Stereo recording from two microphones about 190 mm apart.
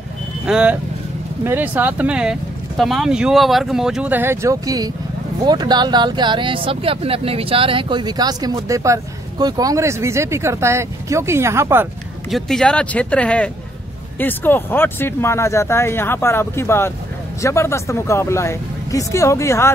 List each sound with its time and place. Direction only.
0.5 s speech: 5° right (ahead or behind)
12.3 s speech: centre (ahead or behind)